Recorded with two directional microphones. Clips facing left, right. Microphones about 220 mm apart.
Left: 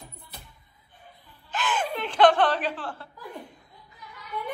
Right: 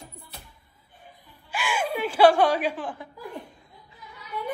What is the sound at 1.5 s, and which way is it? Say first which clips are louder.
Chuckle: right 1 dB; 10° right (ahead or behind).